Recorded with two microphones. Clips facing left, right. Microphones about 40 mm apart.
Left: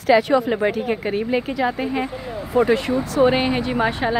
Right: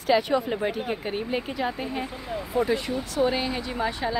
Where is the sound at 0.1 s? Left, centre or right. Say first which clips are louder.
Left 6 dB; left.